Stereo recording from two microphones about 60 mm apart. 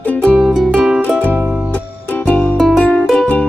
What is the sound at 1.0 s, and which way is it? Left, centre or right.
Music, left.